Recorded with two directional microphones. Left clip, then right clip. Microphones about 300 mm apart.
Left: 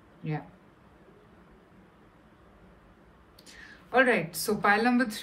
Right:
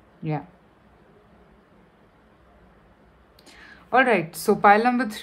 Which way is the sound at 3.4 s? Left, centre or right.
Centre.